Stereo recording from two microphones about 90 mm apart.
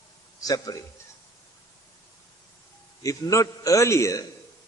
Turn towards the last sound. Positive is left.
turn(degrees=35)  # may be behind; listen again after turning